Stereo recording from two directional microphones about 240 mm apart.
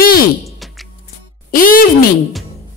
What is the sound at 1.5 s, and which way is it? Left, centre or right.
Speech, left.